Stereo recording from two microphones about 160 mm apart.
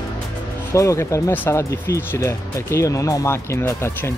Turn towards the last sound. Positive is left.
turn(degrees=15)  # may be behind; listen again after turning